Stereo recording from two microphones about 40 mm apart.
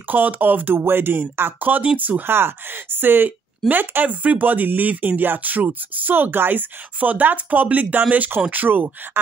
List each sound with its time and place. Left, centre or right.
0.1 s speech: right
0.7 s speech: right
1.6 s speech: right
2.2 s speech: right
4.1 s speech: right
7.0 s speech: right